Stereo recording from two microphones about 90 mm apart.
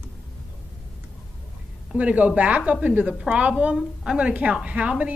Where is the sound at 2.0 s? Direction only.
15° right (ahead or behind).